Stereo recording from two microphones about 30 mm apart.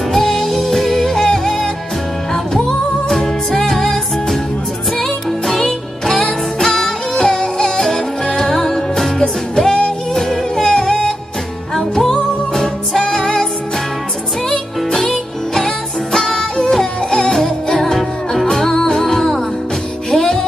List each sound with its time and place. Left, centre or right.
0.1 s music: centre
3.1 s music: centre
5.5 s music: centre
7.2 s music: left
10.1 s music: centre
13.1 s music: left
15.5 s music: centre